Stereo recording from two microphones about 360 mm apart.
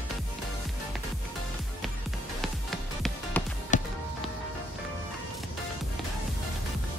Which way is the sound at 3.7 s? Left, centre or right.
Left.